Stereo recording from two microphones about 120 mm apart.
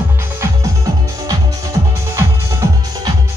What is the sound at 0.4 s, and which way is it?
Music, 30° right (ahead or behind).